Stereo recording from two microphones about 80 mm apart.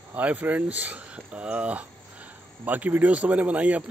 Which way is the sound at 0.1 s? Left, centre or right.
Right.